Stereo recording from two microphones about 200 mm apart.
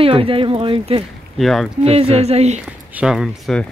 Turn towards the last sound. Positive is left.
turn(degrees=0)  # may be behind; listen again after turning